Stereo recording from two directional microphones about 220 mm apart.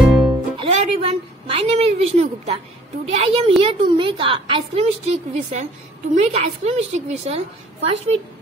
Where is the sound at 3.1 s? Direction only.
25° right (ahead or behind).